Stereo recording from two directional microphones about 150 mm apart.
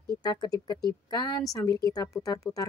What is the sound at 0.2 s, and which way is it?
Speech, 25° left (ahead or behind).